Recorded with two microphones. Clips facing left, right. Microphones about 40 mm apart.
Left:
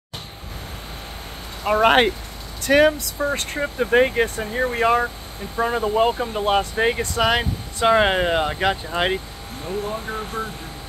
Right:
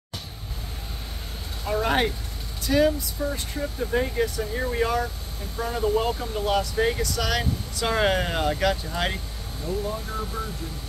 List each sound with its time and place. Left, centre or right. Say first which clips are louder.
1.6 s speech: left 8 dB; left
4.5 s speech: left 6 dB; left
9.7 s speech: left 3 dB; left